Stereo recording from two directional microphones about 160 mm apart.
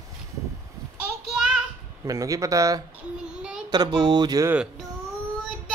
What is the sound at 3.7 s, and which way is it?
Speech, 25° right (ahead or behind).